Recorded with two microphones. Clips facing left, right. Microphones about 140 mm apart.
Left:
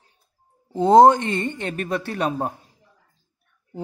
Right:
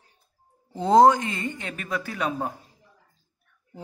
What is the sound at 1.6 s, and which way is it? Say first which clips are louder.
Speech: left 5 dB; 35° left (ahead or behind).